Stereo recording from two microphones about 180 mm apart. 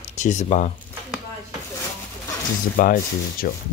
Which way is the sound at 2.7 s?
50° left (ahead or behind).